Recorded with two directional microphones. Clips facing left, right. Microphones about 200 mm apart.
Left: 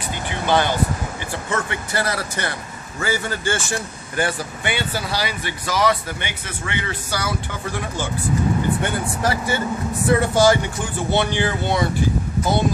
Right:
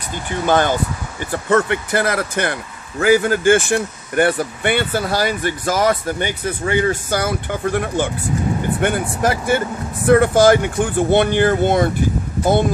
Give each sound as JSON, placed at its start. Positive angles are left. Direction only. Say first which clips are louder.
{"t": 0.3, "sound": "speech", "louder": "right 4 dB", "side_deg": -45}